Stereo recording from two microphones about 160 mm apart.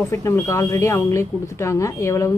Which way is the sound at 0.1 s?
15° left (ahead or behind).